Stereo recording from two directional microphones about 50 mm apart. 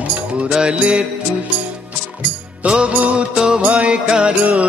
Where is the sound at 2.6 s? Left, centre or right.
Right.